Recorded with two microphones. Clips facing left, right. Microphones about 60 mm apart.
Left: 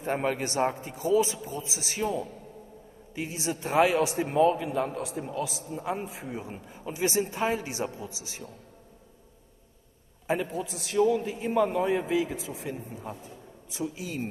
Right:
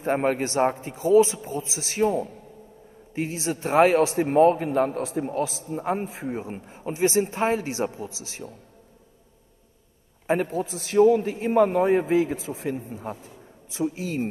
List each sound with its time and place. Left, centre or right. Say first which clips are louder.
0.0 s a man's voice: right 5 dB; right
10.2 s a man's voice: right 5 dB; right
13.7 s a man's voice: right 6 dB; right